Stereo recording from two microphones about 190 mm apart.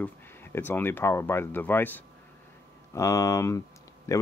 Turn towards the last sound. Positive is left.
turn(degrees=15)  # may be behind; listen again after turning